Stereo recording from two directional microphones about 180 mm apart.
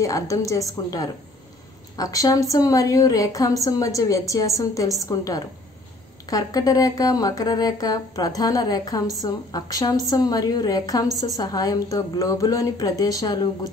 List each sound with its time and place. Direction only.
0.0 s speech: 20° left (ahead or behind)